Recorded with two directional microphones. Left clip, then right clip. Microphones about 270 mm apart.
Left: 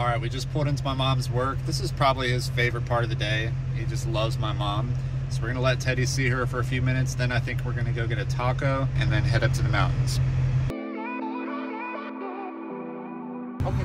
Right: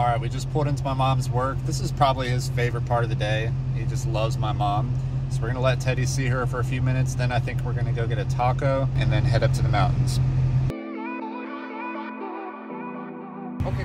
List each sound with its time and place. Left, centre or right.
0.0 s speech: centre